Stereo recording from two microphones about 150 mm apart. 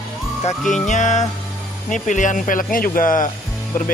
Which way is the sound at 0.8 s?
55° left (ahead or behind).